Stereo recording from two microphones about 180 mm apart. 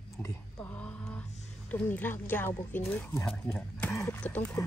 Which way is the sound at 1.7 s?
10° left (ahead or behind).